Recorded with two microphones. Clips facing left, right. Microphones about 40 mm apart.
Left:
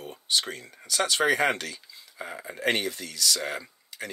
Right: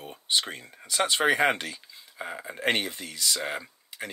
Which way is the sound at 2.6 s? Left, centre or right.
Right.